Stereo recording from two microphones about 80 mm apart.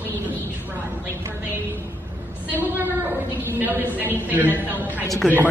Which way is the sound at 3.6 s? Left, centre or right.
Right.